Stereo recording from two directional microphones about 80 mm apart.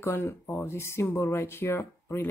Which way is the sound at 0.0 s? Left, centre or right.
Left.